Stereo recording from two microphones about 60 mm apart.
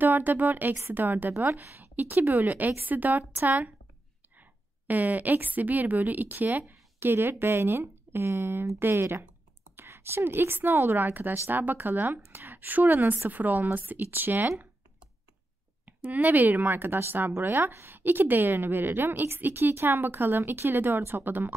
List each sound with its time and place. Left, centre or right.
0.0 s a woman's voice: right
6.7 s a woman's voice: right
15.8 s a woman's voice: right